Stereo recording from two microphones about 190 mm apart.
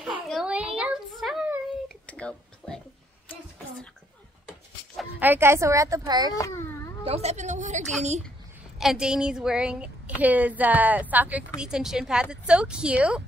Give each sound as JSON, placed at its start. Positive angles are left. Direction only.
{"t": 0.0, "sound": "a sound", "side_deg": 0}
{"t": 4.9, "sound": "speech", "side_deg": -10}
{"t": 6.3, "sound": "a child's voice", "side_deg": 15}
{"t": 7.1, "sound": "a woman's voice", "side_deg": -35}
{"t": 8.7, "sound": "a woman's voice", "side_deg": -5}